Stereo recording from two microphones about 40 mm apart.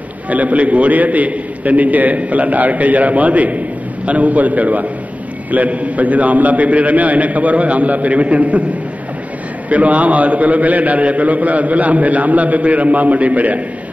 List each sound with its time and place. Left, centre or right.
0.3 s a man's voice: right
9.7 s a man's voice: right